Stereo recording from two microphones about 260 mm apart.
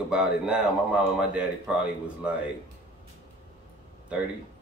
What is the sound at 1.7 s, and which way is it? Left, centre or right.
Speech, centre.